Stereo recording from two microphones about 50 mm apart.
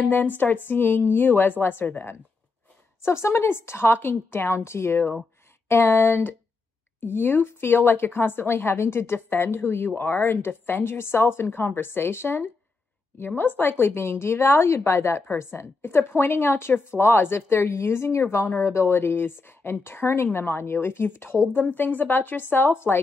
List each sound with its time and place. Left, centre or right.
0.0 s a woman's voice: left
3.0 s a woman's voice: left